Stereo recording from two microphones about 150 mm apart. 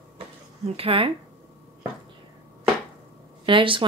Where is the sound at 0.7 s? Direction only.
35° right (ahead or behind).